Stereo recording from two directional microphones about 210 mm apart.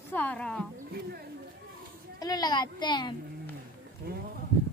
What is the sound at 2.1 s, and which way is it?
Speech, 20° left (ahead or behind).